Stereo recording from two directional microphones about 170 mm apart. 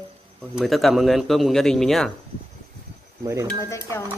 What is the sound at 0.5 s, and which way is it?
A man's voice, centre (ahead or behind).